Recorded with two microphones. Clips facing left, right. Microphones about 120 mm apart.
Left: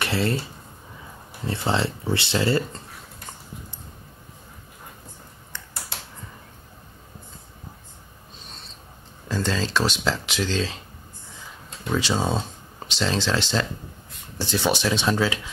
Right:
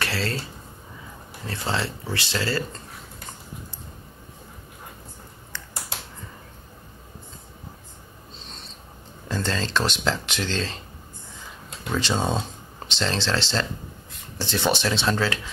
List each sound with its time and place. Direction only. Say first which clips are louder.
0.0 s speech: left 4 dB; 20° left (ahead or behind)
1.5 s speech: left 4 dB; 20° left (ahead or behind)
9.3 s speech: left 1 dB; 5° left (ahead or behind)
11.9 s speech: left 1 dB; 5° left (ahead or behind)